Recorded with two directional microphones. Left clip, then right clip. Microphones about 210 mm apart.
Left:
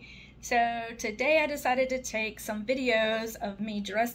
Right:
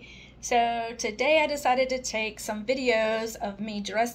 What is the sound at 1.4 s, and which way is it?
A woman's voice, 5° left (ahead or behind).